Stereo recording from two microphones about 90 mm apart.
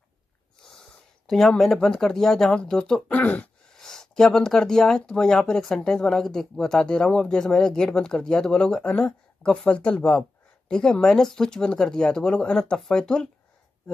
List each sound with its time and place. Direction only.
1.2 s speech: 5° left (ahead or behind)
3.2 s speech: 15° left (ahead or behind)
3.7 s speech: 5° left (ahead or behind)